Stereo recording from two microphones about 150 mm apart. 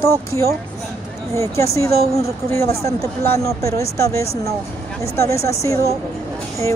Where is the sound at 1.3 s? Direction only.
20° left (ahead or behind).